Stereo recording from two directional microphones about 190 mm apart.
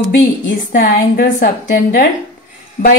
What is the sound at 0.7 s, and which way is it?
A woman's voice, 50° left (ahead or behind).